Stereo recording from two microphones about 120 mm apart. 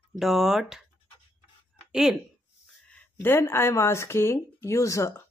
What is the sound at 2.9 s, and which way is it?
Speech, 20° left (ahead or behind).